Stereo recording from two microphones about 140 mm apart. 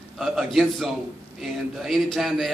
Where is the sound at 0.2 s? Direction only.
Centre (ahead or behind).